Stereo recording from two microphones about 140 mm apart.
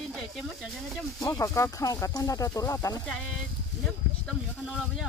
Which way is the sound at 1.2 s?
25° left (ahead or behind).